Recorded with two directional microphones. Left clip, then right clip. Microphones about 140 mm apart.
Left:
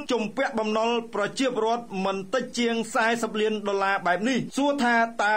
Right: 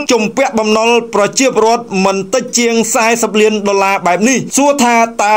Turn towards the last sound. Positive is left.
turn(degrees=-30)  # may be behind; listen again after turning